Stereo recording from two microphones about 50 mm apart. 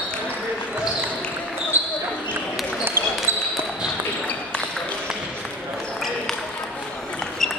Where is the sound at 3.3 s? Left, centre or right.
Right.